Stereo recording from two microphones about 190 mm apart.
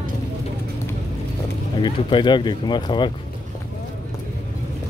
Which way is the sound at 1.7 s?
25° left (ahead or behind).